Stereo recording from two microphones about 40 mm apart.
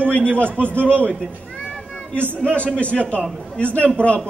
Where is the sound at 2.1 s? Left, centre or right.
Right.